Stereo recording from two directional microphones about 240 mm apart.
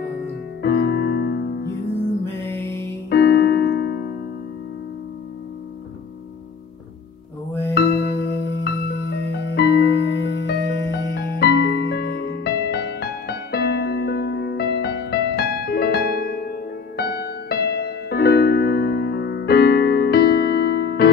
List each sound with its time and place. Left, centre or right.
0.6 s music: left
2.2 s music: centre
3.1 s music: left
7.7 s music: left